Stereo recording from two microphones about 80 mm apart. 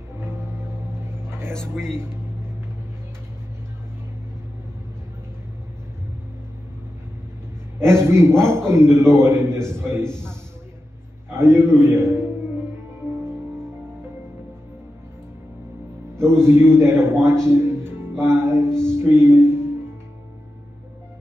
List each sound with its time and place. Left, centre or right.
7.8 s a man's voice: right
11.2 s a man's voice: right
16.2 s a man's voice: right
17.5 s music: right